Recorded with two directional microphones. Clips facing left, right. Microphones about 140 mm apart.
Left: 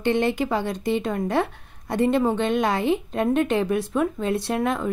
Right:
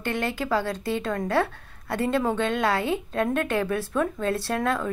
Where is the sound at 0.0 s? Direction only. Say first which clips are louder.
Left 6 dB; 25° left (ahead or behind).